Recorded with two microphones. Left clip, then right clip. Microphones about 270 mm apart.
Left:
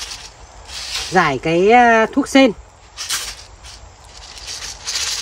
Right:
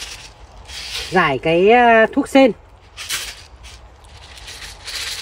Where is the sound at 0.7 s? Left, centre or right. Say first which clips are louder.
Left 1 dB; centre.